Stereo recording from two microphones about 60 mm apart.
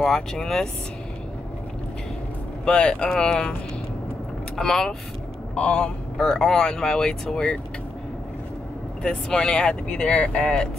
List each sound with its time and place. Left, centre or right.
0.0 s speech: centre
2.6 s speech: centre
4.6 s speech: centre
5.5 s speech: centre
9.0 s speech: centre